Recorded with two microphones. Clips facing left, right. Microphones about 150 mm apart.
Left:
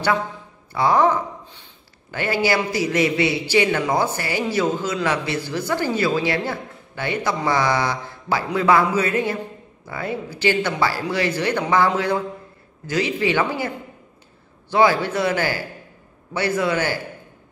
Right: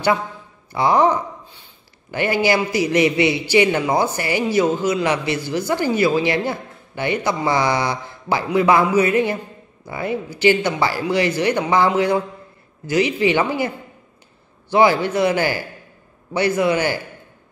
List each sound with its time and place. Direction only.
0.7 s a man's voice: 15° right (ahead or behind)
14.7 s a man's voice: 15° right (ahead or behind)